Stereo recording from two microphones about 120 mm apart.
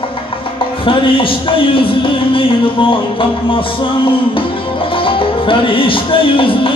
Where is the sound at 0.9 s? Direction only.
45° left (ahead or behind).